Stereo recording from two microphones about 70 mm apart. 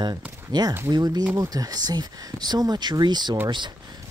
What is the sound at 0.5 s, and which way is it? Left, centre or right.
Speech, right.